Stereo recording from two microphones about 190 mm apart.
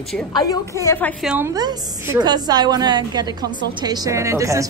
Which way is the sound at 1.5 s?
20° right (ahead or behind).